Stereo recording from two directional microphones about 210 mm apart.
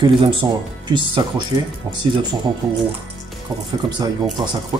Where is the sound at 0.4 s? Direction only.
20° right (ahead or behind).